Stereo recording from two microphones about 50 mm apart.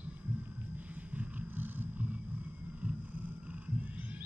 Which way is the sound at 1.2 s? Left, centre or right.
Right.